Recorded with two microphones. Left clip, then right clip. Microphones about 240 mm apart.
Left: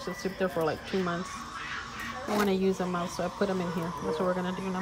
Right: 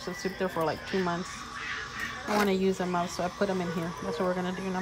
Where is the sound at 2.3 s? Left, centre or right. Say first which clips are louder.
Right 1 dB; centre.